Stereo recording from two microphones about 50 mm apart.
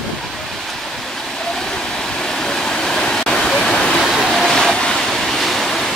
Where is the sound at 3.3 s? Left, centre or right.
Centre.